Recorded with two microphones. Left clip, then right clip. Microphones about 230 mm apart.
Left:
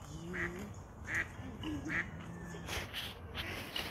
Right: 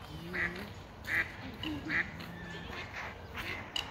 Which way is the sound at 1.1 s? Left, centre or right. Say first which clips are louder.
Right 5 dB; right.